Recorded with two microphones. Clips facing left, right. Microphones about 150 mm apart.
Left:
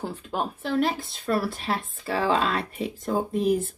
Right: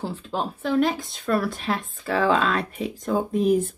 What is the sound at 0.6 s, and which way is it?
Speech, centre (ahead or behind).